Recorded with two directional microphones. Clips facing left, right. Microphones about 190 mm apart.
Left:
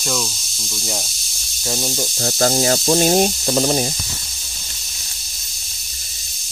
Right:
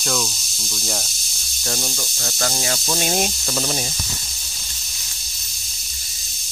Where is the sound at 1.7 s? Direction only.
15° left (ahead or behind).